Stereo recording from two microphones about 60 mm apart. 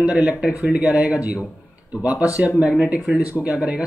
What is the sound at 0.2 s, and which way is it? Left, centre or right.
Speech, right.